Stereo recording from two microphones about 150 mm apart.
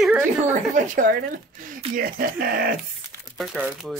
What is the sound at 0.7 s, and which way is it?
Speech, 60° right (ahead or behind).